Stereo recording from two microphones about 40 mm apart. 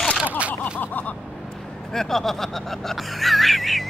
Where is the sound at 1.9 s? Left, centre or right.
Centre.